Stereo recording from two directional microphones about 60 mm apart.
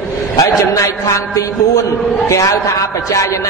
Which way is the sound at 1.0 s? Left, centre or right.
Left.